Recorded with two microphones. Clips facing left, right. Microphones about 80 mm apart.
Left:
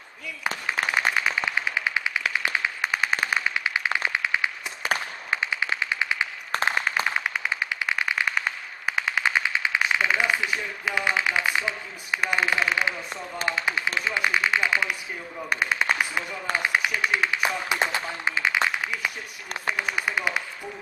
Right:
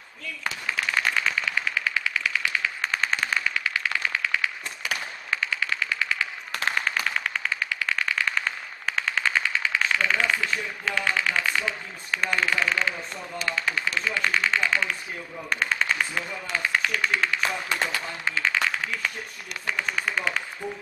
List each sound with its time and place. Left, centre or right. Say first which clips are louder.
0.9 s machine gun: even; centre
4.8 s a sound: left 5 dB; left
5.3 s machine gun: left 1 dB; centre
6.6 s a sound: left 1 dB; centre
7.1 s machine gun: left 1 dB; centre
13.5 s a man's voice: left 1 dB; centre